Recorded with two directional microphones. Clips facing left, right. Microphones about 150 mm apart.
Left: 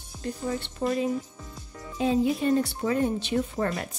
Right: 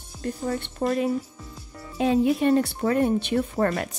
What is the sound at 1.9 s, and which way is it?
Speech, 65° right (ahead or behind).